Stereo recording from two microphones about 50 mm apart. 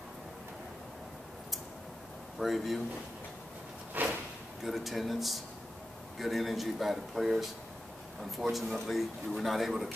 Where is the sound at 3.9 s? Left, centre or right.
Right.